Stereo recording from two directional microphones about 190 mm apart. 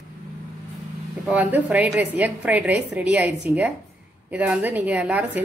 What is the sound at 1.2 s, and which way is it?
A woman's voice, 10° right (ahead or behind).